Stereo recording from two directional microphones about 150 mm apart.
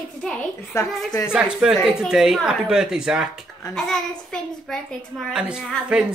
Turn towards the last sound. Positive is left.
turn(degrees=0)  # may be behind; listen again after turning